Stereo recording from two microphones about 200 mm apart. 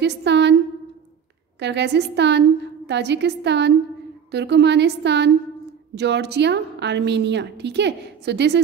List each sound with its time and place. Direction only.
0.0 s a woman's voice: 60° right (ahead or behind)
1.6 s a woman's voice: 60° right (ahead or behind)